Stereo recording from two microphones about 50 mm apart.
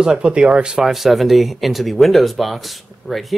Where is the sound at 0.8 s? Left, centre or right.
Centre.